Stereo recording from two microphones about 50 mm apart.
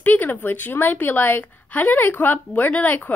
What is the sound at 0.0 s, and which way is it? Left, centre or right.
A woman's voice, left.